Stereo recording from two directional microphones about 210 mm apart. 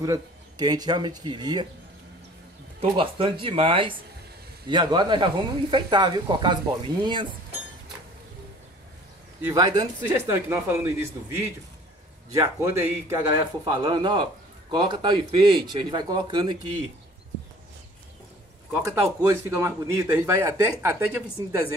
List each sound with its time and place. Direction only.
0.0 s speech: 15° right (ahead or behind)
2.8 s speech: 25° right (ahead or behind)
9.4 s speech: 15° right (ahead or behind)
18.7 s speech: 15° right (ahead or behind)